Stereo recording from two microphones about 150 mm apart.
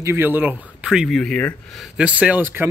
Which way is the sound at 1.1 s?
10° left (ahead or behind).